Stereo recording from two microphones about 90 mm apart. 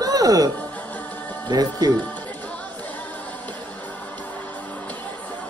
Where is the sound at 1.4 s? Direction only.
45° right (ahead or behind).